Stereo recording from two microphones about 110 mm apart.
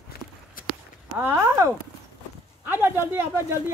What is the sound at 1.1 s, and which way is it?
Speech, 25° right (ahead or behind).